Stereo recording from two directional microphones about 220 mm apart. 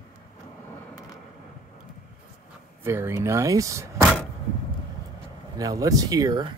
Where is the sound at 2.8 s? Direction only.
10° right (ahead or behind).